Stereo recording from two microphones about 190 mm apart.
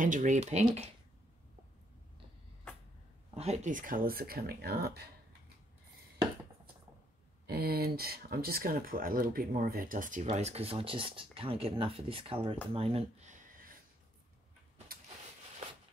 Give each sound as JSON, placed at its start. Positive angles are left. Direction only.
{"t": 0.0, "sound": "speech", "side_deg": -40}
{"t": 3.3, "sound": "speech", "side_deg": -35}
{"t": 7.4, "sound": "speech", "side_deg": -55}
{"t": 12.7, "sound": "a sound", "side_deg": -30}